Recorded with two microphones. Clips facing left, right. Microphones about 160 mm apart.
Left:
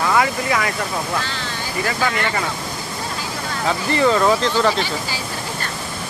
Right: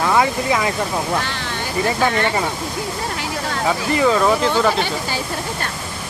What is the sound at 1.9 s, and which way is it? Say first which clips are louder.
Speech: right 3 dB; 25° right (ahead or behind).